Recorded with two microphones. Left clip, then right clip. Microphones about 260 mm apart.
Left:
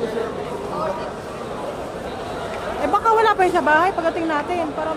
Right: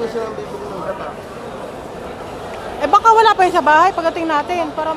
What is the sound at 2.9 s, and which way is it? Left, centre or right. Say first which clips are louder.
A woman's voice: right 6 dB; centre.